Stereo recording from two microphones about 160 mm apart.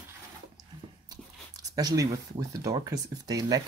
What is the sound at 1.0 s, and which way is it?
Speech, 25° right (ahead or behind).